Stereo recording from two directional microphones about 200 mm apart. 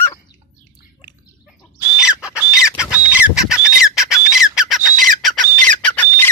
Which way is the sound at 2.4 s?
5° right (ahead or behind).